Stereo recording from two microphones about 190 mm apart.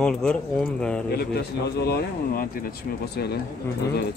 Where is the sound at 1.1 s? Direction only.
55° left (ahead or behind).